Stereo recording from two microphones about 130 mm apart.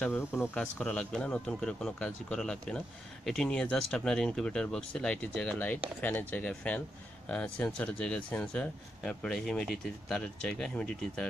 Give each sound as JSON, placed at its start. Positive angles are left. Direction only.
{"t": 0.0, "sound": "speech", "side_deg": 15}